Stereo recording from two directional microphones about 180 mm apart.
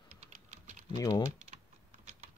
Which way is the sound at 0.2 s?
40° right (ahead or behind).